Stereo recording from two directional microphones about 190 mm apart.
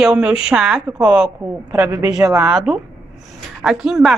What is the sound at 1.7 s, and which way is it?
Speech, 15° right (ahead or behind).